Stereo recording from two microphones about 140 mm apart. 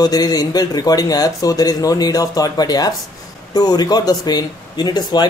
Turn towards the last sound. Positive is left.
turn(degrees=30)  # may be behind; listen again after turning